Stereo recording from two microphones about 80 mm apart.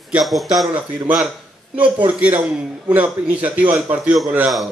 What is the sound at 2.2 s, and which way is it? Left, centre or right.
Speech, centre.